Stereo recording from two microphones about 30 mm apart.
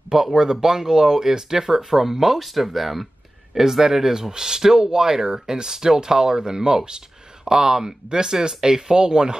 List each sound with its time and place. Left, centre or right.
0.1 s speech: right; by 3.1 s centre
3.5 s speech: centre